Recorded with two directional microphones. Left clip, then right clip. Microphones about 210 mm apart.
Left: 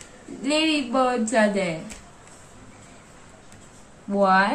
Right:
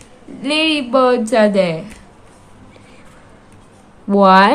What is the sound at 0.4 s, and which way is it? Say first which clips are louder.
Speech: right 6 dB; 50° right (ahead or behind).